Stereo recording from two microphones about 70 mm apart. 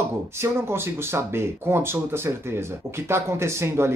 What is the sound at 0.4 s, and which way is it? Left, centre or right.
Speech, right.